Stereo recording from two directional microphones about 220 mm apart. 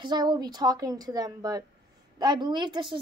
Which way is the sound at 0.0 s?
20° right (ahead or behind).